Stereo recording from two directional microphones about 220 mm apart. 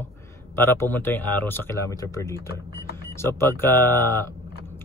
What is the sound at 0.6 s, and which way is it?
Speech, 10° left (ahead or behind).